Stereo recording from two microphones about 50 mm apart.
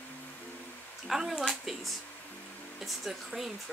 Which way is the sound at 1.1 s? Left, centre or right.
Centre.